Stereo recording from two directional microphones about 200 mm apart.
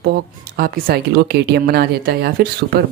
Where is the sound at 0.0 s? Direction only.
50° right (ahead or behind).